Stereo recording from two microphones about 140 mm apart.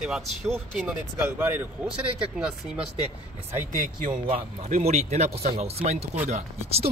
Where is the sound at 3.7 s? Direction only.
70° right (ahead or behind).